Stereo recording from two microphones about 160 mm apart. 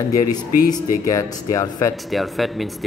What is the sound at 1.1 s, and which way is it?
Speech, 20° left (ahead or behind).